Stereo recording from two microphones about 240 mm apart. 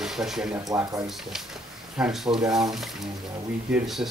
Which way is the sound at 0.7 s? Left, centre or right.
Centre.